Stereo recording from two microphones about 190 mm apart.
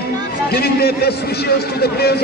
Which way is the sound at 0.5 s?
55° left (ahead or behind).